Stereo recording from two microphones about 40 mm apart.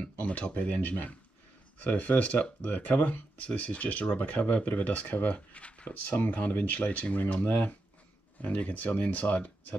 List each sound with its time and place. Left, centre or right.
0.2 s speech: left
5.9 s speech: left
7.4 s speech: left